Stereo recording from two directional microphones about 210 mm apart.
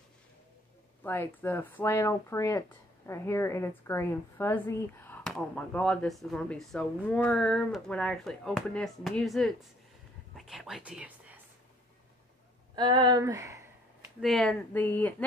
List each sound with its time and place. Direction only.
1.0 s a woman's voice: 10° left (ahead or behind); by 11.1 s 5° right (ahead or behind)
12.7 s speech: 20° right (ahead or behind)
14.2 s a woman's voice: centre (ahead or behind)